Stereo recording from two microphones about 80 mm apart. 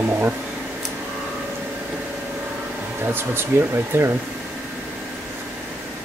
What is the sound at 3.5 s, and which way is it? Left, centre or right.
Speech, right.